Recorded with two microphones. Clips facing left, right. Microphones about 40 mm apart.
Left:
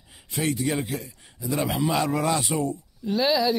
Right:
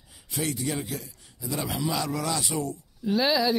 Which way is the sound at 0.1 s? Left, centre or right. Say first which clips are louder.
Left 4 dB; left.